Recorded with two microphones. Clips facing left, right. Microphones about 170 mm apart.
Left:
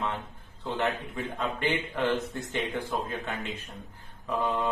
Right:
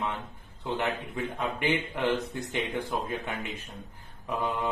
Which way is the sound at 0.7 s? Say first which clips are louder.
Left 1 dB; 10° right (ahead or behind).